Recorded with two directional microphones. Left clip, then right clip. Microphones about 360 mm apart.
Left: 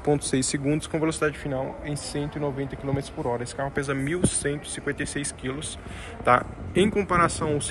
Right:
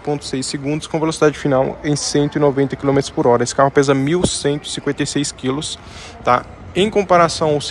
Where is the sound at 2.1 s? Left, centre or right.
Right.